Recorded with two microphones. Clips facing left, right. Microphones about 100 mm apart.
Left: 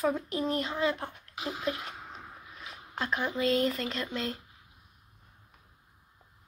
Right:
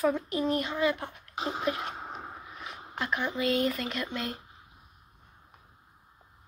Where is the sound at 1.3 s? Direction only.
30° right (ahead or behind).